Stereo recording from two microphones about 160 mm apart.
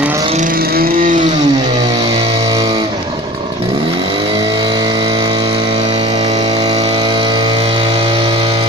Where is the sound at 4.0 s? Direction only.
30° right (ahead or behind).